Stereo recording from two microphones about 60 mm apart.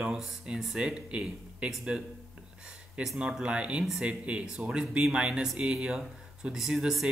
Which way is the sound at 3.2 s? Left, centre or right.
Centre.